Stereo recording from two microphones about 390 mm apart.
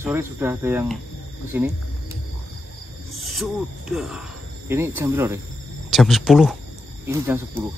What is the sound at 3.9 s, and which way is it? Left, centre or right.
Speech, centre.